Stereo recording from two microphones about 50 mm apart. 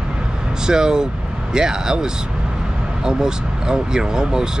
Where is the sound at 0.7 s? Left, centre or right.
Centre.